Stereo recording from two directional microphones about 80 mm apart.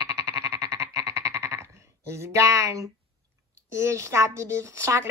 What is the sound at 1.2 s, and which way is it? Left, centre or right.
Sheep, right.